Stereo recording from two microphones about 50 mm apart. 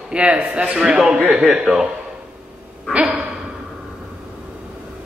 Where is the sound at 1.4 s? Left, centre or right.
Centre.